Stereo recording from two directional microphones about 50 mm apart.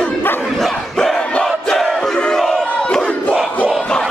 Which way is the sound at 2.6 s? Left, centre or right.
Left.